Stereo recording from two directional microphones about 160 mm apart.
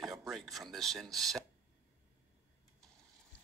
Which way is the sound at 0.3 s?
Centre (ahead or behind).